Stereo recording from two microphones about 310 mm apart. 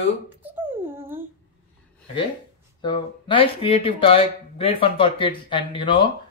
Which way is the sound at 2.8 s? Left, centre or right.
Centre.